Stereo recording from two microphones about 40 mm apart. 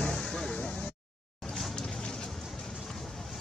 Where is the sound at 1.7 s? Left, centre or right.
Centre.